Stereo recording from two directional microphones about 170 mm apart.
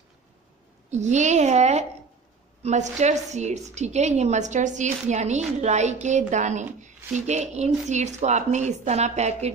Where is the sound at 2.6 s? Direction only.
40° right (ahead or behind).